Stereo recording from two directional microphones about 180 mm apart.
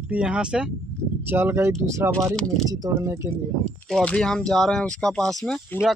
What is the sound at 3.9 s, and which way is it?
Speech, 5° left (ahead or behind).